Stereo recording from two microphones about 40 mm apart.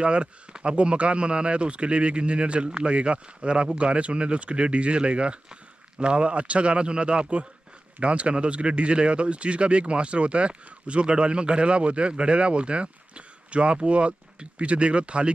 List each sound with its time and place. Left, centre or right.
0.0 s speech: right